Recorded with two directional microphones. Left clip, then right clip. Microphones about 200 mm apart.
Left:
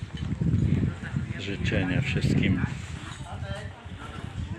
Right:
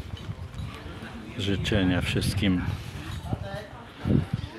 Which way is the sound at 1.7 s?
25° right (ahead or behind).